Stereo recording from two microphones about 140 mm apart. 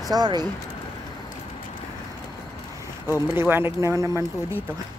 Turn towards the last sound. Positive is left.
turn(degrees=-20)  # may be behind; listen again after turning